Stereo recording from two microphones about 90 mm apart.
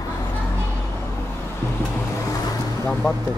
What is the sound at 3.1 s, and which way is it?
Speech, 40° left (ahead or behind).